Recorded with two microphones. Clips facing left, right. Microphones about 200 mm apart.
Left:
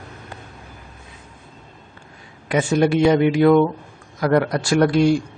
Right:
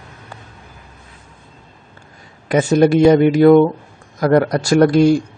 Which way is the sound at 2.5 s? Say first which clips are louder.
Right 5 dB; 40° right (ahead or behind).